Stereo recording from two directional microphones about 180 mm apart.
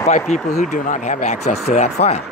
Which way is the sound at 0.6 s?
45° left (ahead or behind).